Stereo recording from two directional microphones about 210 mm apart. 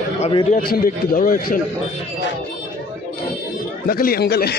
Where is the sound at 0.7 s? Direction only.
45° left (ahead or behind).